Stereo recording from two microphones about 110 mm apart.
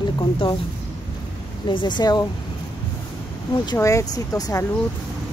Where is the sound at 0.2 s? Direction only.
45° left (ahead or behind).